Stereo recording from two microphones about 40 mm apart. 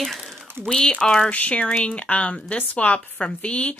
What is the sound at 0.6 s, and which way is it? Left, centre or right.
Speech, centre.